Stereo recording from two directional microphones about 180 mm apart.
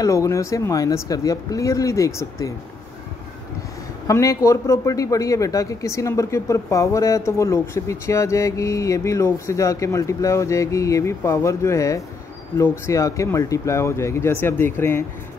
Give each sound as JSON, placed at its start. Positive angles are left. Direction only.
{"t": 0.0, "sound": "speech", "side_deg": 15}
{"t": 4.1, "sound": "speech", "side_deg": 15}